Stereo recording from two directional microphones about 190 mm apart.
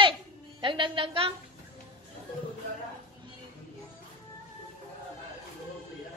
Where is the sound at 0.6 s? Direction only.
25° right (ahead or behind).